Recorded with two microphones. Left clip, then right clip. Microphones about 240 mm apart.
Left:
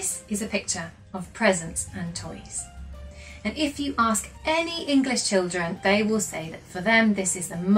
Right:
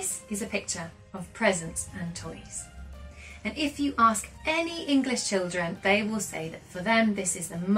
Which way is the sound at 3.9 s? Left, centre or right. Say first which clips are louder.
Right 3 dB; left.